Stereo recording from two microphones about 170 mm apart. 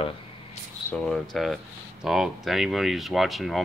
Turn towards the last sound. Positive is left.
turn(degrees=0)  # may be behind; listen again after turning